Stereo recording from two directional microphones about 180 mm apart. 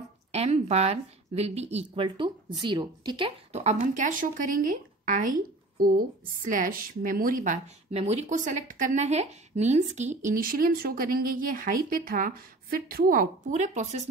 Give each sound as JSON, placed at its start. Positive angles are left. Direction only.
{"t": 0.3, "sound": "speech", "side_deg": -35}